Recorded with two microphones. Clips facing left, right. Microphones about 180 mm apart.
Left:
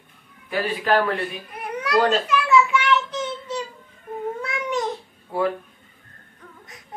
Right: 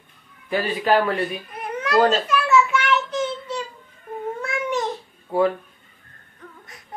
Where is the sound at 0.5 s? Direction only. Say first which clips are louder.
Right 2 dB; centre (ahead or behind).